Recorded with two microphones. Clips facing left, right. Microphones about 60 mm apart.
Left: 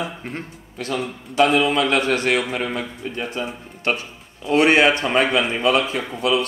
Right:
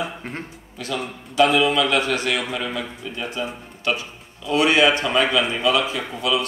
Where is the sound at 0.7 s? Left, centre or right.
Left.